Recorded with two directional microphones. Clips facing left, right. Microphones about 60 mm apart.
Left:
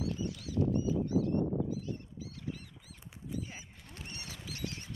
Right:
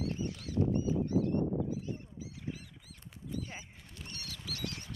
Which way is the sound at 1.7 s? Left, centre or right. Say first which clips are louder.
Even; right.